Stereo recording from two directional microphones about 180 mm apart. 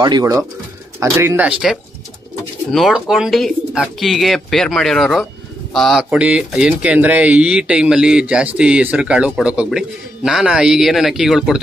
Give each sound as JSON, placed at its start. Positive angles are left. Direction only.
{"t": 0.0, "sound": "speech", "side_deg": -20}
{"t": 2.7, "sound": "speech", "side_deg": 0}